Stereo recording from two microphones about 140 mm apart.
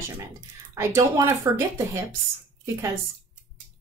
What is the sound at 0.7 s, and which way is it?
Speech, 20° right (ahead or behind).